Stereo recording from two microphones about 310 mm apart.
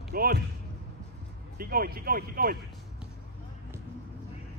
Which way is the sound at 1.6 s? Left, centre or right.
Right.